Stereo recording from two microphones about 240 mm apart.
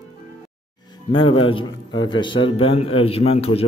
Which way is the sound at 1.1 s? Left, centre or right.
Left.